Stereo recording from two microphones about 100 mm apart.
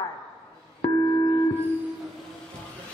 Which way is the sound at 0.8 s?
45° left (ahead or behind).